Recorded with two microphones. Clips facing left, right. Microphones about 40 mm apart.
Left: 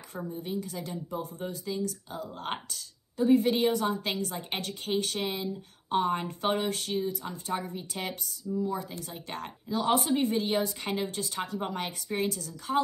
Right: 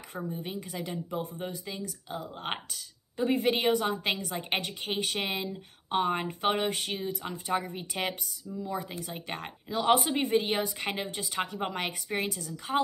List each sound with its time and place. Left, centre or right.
0.3 s speech: right
3.2 s speech: right
11.6 s speech: right